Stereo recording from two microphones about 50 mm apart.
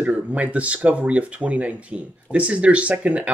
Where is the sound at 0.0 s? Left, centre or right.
Right.